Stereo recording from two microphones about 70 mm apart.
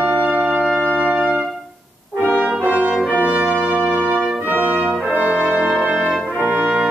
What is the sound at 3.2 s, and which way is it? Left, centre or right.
Brass instrument, right.